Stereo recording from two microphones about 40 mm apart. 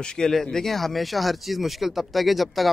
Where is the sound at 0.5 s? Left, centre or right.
Centre.